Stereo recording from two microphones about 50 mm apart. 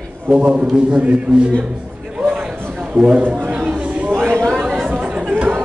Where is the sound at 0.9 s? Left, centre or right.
Right.